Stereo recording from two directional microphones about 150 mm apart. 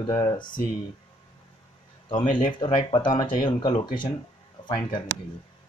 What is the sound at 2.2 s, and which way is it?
Speech, 60° left (ahead or behind).